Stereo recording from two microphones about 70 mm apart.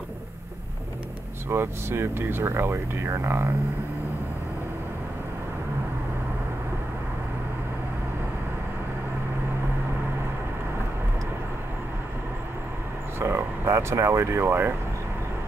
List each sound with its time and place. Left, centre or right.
1.5 s speech: right
13.2 s speech: right